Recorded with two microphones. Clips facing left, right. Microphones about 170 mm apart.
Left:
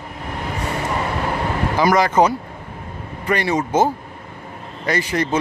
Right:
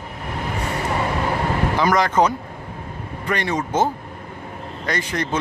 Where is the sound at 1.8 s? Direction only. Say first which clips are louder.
Left 3 dB; 5° left (ahead or behind).